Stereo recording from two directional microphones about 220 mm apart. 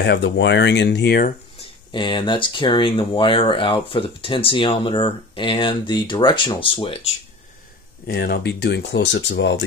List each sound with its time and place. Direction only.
0.0 s speech: 50° left (ahead or behind)
1.9 s speech: 20° left (ahead or behind)
8.1 s speech: 45° left (ahead or behind)